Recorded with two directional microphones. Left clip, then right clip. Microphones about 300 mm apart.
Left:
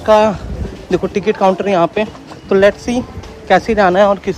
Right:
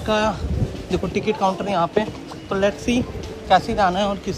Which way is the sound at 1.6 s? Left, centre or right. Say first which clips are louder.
Left 7 dB; left.